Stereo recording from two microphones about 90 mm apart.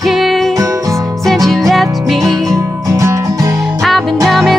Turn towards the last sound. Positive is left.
turn(degrees=0)  # may be behind; listen again after turning